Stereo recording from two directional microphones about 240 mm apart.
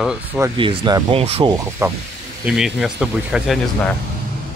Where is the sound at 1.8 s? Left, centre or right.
Centre.